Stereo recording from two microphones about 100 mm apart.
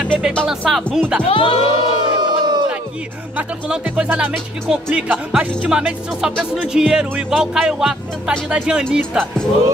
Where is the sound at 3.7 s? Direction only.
10° right (ahead or behind).